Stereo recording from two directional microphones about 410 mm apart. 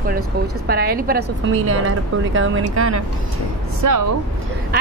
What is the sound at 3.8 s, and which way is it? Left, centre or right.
Speech, right.